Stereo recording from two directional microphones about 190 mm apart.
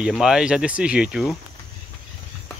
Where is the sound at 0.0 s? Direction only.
5° right (ahead or behind).